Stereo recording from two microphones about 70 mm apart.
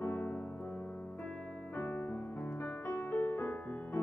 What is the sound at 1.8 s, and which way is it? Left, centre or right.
Music, left.